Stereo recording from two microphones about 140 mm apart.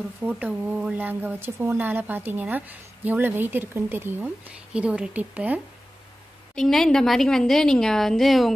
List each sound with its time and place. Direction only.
0.2 s speech: 10° right (ahead or behind)
6.5 s a woman's voice: 5° left (ahead or behind)